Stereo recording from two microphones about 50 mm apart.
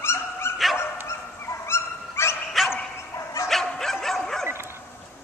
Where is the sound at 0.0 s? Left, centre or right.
Left.